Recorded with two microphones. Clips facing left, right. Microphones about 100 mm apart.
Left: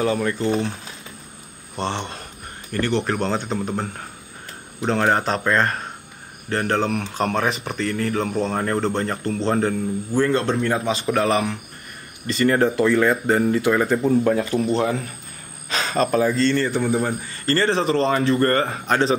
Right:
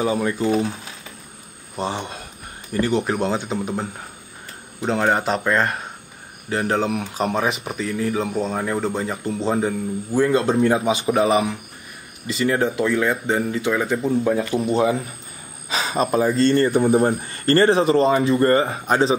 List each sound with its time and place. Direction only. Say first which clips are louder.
0.0 s speech: even; 15° right (ahead or behind)
1.8 s speech: even; 10° right (ahead or behind)
17.2 s speech: right 5 dB; 50° right (ahead or behind)
17.9 s speech: right 2 dB; 15° right (ahead or behind)